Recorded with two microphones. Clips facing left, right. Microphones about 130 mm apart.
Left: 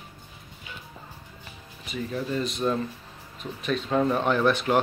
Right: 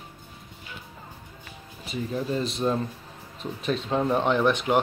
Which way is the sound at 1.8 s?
25° right (ahead or behind).